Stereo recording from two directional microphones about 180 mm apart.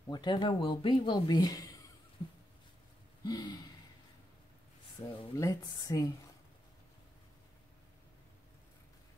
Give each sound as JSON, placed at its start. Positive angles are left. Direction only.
{"t": 0.1, "sound": "speech", "side_deg": 25}
{"t": 3.3, "sound": "speech", "side_deg": 20}
{"t": 5.0, "sound": "speech", "side_deg": 20}